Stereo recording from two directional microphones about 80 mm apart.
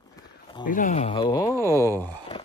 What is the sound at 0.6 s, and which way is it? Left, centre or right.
Speech, left.